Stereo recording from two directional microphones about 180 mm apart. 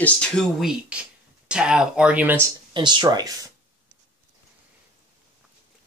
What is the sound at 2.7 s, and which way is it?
Speech, 25° right (ahead or behind).